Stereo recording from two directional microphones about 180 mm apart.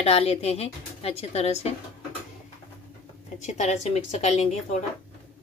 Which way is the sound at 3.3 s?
40° left (ahead or behind).